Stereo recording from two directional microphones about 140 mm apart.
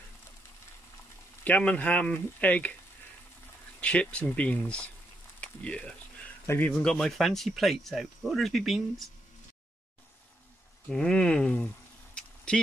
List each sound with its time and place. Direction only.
1.4 s speech: 10° left (ahead or behind)
3.8 s speech: 10° left (ahead or behind)
5.4 s a sound: 10° left (ahead or behind)
6.4 s a man's voice: 15° left (ahead or behind)
6.8 s speech: 5° left (ahead or behind)
10.9 s a sound: 5° left (ahead or behind)